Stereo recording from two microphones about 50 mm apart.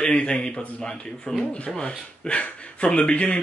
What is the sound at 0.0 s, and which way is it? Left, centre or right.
Speech, centre.